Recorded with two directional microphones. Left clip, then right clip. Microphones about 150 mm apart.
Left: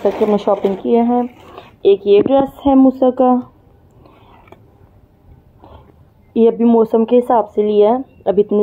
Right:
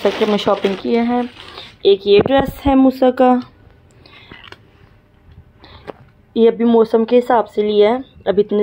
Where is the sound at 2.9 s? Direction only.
5° left (ahead or behind).